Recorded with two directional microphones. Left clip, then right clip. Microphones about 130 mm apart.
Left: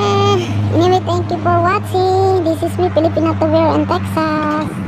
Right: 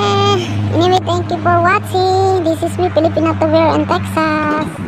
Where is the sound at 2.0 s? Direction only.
65° left (ahead or behind).